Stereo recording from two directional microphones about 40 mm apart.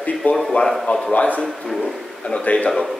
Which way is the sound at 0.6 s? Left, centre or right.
Left.